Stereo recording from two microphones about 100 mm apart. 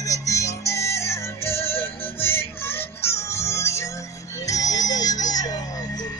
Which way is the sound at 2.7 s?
25° left (ahead or behind).